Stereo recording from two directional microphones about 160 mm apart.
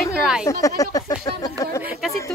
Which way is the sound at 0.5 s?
20° left (ahead or behind).